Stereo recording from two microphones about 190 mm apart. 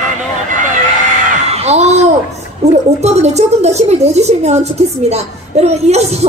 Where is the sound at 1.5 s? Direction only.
35° right (ahead or behind).